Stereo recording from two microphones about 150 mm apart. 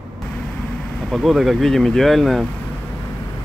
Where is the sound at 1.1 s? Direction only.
Centre (ahead or behind).